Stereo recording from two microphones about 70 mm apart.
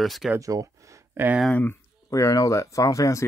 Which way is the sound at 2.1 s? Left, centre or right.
Left.